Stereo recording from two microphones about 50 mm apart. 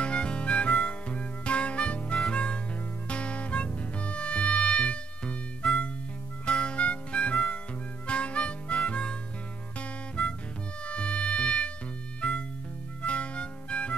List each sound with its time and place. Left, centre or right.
0.0 s music: centre
6.4 s harmonica: left
9.8 s music: left